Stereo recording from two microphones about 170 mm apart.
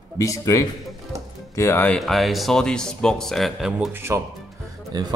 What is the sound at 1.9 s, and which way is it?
Speech, centre (ahead or behind).